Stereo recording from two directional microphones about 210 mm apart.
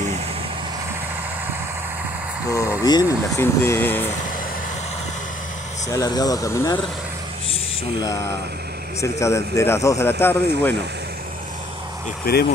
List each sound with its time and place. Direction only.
2.8 s speech: 15° left (ahead or behind)
5.9 s speech: 15° left (ahead or behind)
9.0 s speech: 15° left (ahead or behind)
12.3 s speech: 45° left (ahead or behind)